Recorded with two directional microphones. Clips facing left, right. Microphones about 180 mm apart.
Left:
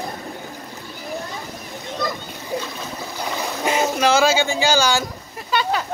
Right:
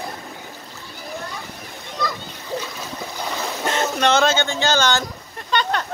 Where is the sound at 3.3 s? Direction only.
10° left (ahead or behind).